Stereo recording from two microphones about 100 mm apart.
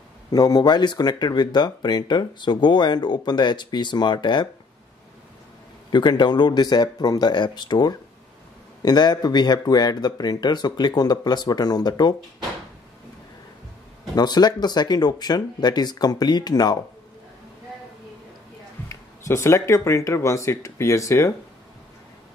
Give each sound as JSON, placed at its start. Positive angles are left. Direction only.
{"t": 0.3, "sound": "speech", "side_deg": 40}
{"t": 5.9, "sound": "speech", "side_deg": 45}
{"t": 14.1, "sound": "speech", "side_deg": 45}
{"t": 18.9, "sound": "speech", "side_deg": 30}